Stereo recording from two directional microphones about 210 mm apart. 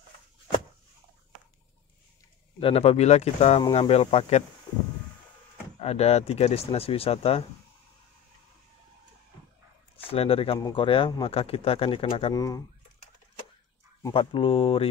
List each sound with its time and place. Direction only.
2.6 s speech: 30° left (ahead or behind)
5.8 s speech: 30° left (ahead or behind)
10.0 s speech: 25° left (ahead or behind)
14.0 s speech: 25° left (ahead or behind)